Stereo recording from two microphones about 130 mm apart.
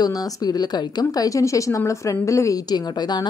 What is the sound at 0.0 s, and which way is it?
A woman's voice, 30° left (ahead or behind).